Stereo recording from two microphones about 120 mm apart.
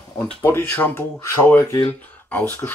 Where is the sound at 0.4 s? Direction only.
20° left (ahead or behind).